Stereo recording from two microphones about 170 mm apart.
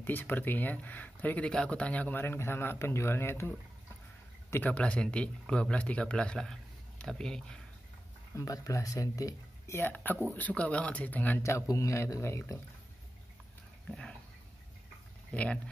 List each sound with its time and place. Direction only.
0.0 s speech: 10° left (ahead or behind)
8.4 s speech: 20° left (ahead or behind)
13.8 s a sound: 5° left (ahead or behind)
15.3 s speech: 5° left (ahead or behind)